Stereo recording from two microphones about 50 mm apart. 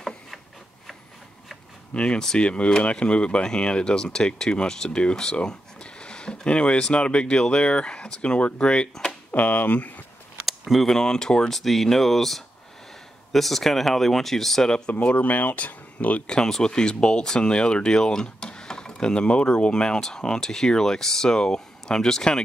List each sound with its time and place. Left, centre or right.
2.0 s speech: centre
9.3 s speech: left
10.7 s speech: centre
11.0 s speech: centre
11.5 s speech: centre
14.9 s speech: left
16.3 s speech: centre